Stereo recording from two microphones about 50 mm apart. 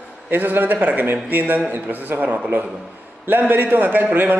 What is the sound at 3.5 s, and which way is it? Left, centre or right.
Speech, right.